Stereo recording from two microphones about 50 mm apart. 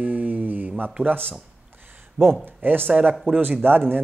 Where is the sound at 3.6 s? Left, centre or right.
Right.